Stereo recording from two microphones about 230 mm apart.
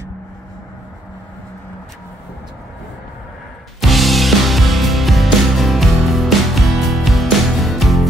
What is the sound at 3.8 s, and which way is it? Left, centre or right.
Music, centre.